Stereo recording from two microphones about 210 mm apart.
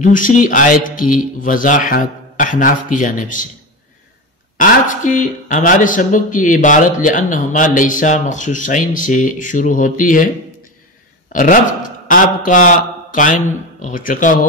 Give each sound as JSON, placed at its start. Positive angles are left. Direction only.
{"t": 0.0, "sound": "speech", "side_deg": 40}
{"t": 4.6, "sound": "a man's voice", "side_deg": 35}